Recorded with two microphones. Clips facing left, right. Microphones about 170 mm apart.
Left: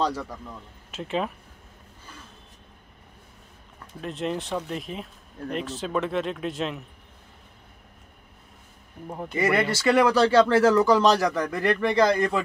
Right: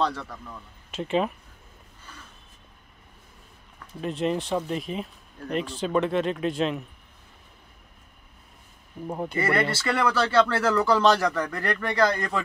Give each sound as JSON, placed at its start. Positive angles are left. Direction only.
{"t": 0.0, "sound": "speech", "side_deg": 10}
{"t": 0.9, "sound": "speech", "side_deg": 0}
{"t": 4.0, "sound": "speech", "side_deg": 0}
{"t": 9.0, "sound": "speech", "side_deg": -5}
{"t": 9.4, "sound": "speech", "side_deg": 15}